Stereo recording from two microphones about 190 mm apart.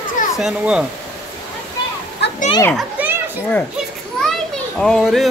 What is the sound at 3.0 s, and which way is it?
Children playing, 10° right (ahead or behind).